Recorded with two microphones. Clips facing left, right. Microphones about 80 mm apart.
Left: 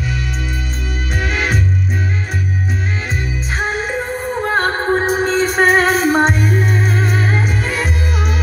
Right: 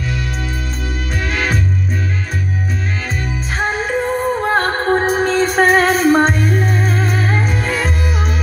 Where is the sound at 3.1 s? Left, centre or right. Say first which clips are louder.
Even; centre.